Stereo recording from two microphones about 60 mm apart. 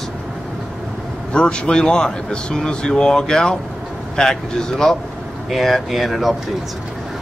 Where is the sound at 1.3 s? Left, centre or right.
Centre.